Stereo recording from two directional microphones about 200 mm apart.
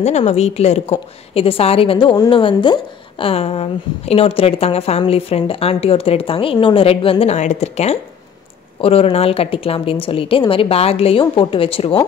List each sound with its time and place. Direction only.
0.0 s a woman's voice: 35° left (ahead or behind)